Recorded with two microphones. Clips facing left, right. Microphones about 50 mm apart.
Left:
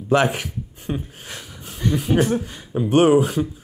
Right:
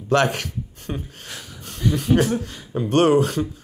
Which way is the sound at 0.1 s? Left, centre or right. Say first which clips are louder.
Left 1 dB; centre.